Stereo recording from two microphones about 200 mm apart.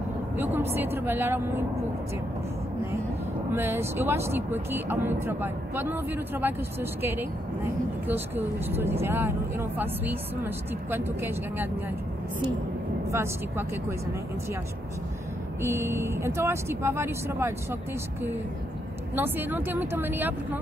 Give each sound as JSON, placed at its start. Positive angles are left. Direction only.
{"t": 0.4, "sound": "speech", "side_deg": -10}
{"t": 3.5, "sound": "speech", "side_deg": -10}
{"t": 13.1, "sound": "speech", "side_deg": -10}
{"t": 15.6, "sound": "speech", "side_deg": -15}
{"t": 19.1, "sound": "speech", "side_deg": -10}